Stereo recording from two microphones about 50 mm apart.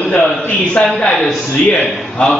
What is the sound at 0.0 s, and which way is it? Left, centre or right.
Speech, centre.